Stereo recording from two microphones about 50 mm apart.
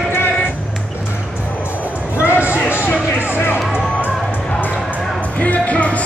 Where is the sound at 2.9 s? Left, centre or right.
Left.